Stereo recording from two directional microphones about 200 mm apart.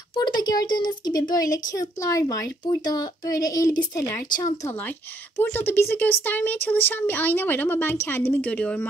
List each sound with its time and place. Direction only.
0.1 s speech: 20° left (ahead or behind)